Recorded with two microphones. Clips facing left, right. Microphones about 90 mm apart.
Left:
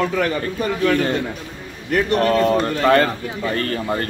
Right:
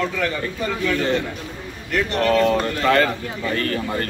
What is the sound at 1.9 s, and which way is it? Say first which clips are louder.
Speech: left 2 dB; 40° left (ahead or behind).